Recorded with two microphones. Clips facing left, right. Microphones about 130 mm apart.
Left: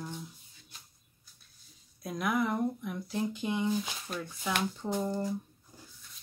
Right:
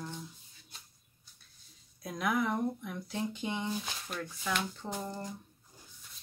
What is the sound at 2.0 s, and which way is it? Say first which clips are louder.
Speech: left 1 dB; centre (ahead or behind).